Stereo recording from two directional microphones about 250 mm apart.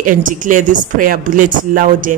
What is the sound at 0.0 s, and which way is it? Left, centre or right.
A woman's voice, right.